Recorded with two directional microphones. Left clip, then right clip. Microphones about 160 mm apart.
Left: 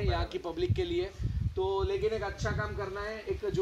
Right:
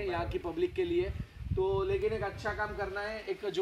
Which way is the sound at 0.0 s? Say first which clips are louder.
Even; 80° right.